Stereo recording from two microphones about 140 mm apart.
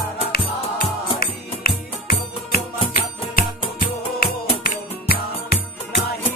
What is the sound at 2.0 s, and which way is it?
Music, 90° left.